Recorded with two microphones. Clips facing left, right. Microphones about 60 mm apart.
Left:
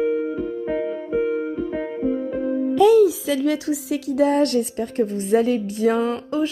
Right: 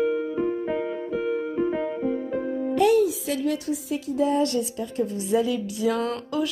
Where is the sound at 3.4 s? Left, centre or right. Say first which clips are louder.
Left 4 dB; left.